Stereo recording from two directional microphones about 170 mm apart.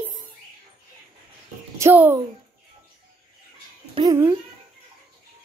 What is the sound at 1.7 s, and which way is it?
Speech, 15° right (ahead or behind).